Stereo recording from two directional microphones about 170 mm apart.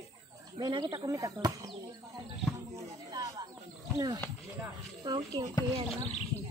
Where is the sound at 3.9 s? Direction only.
20° right (ahead or behind).